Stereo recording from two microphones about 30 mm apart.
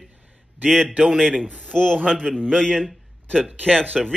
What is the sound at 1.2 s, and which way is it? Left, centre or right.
A man's voice, left.